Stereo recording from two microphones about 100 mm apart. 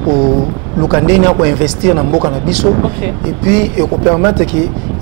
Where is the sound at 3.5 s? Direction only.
5° left (ahead or behind).